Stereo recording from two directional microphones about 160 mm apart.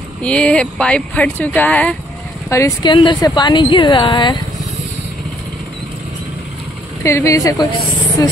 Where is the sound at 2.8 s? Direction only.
30° left (ahead or behind).